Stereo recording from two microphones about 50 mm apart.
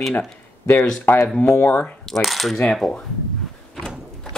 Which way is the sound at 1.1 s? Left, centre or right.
Left.